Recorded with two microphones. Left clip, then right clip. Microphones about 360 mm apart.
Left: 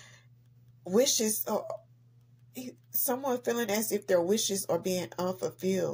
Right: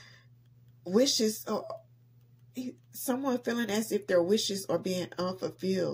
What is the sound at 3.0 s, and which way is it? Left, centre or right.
Speech, left.